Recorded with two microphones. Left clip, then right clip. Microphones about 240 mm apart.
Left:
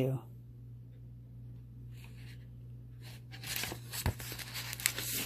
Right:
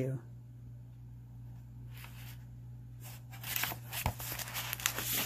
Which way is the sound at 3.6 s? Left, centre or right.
Centre.